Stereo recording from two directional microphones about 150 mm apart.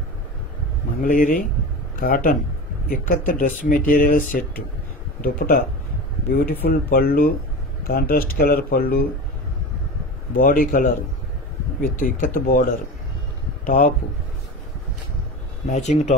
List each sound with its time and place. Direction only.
1.0 s speech: 65° left (ahead or behind)
5.2 s speech: 80° left
6.6 s speech: 85° left
10.3 s speech: 70° left (ahead or behind)
12.0 s speech: 70° left (ahead or behind)
13.7 s speech: 75° left (ahead or behind)
15.6 s speech: 50° left (ahead or behind)